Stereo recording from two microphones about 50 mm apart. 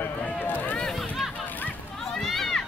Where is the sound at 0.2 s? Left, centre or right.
Left.